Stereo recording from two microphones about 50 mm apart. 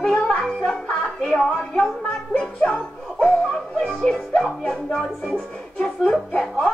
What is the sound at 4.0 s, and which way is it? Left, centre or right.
Music, centre.